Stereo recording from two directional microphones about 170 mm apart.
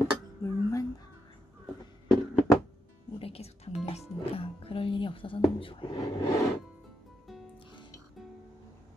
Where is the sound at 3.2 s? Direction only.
35° left (ahead or behind); by 6.4 s 20° left (ahead or behind).